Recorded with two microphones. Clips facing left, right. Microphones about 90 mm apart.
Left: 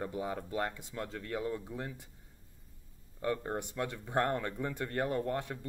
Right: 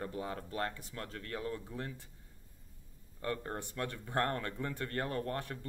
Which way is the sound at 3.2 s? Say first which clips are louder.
Left 4 dB; 15° left (ahead or behind).